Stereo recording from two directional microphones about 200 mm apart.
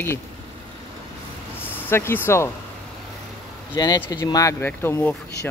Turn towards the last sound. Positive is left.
turn(degrees=10)  # may be behind; listen again after turning